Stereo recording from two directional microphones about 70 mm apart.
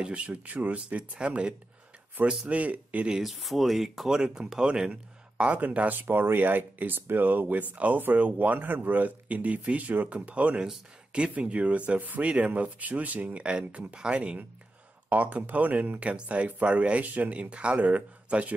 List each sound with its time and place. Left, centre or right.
0.0 s speech: centre
3.2 s speech: centre
5.9 s speech: right